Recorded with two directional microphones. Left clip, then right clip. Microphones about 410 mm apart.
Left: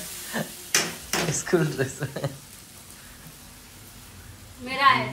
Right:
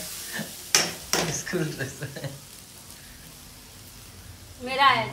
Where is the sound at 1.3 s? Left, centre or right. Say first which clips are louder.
Left 5 dB; centre.